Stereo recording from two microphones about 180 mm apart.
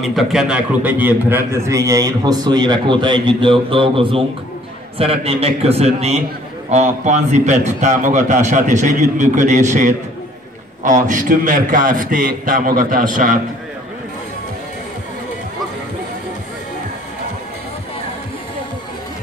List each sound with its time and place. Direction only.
0.0 s a man's voice: centre (ahead or behind); by 13.4 s 45° right (ahead or behind)